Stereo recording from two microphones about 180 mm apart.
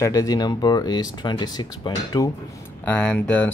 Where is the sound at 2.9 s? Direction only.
10° left (ahead or behind).